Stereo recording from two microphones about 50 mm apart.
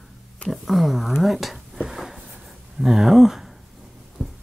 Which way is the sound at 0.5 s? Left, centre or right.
Centre.